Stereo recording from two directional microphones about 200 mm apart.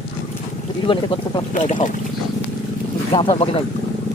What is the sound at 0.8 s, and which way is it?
Speech, 20° left (ahead or behind).